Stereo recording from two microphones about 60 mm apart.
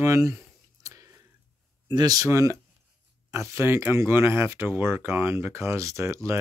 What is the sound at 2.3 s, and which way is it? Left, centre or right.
Speech, right.